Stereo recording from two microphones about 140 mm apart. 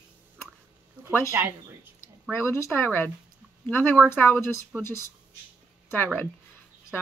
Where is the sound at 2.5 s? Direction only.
20° left (ahead or behind).